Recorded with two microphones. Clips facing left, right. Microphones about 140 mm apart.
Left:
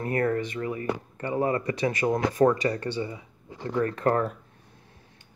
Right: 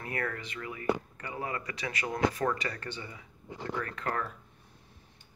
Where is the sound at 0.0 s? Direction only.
35° left (ahead or behind).